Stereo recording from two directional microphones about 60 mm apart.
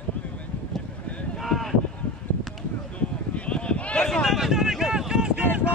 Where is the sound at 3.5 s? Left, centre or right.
Centre.